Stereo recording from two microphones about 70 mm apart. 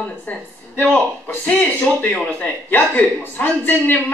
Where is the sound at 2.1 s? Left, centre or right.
Left.